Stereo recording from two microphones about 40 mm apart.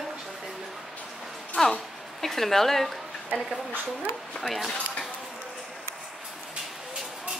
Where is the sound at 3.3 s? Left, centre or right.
Right.